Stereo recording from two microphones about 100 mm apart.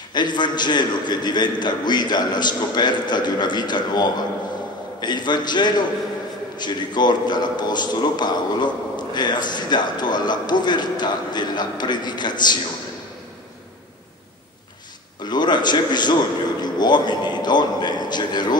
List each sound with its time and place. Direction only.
0.1 s a man's voice: 50° left (ahead or behind)
15.2 s a man's voice: 45° left (ahead or behind)